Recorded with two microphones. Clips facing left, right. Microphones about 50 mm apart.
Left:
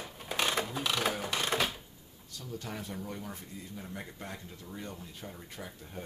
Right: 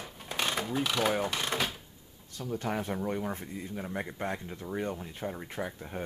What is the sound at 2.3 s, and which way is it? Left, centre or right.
Speech, right.